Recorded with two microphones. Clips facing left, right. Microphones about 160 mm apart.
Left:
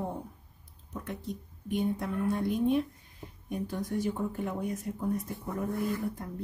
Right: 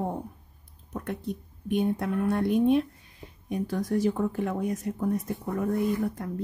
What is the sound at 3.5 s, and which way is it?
A woman's voice, 90° right.